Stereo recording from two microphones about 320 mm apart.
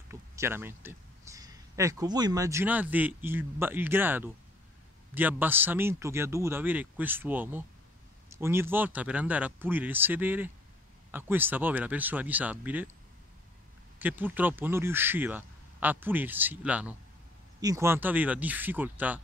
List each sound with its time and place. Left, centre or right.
0.1 s a man's voice: centre
13.9 s speech: centre